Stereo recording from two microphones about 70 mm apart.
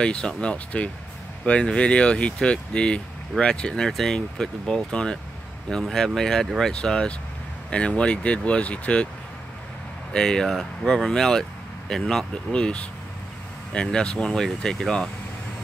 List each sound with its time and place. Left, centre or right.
0.0 s speech: centre
10.1 s speech: centre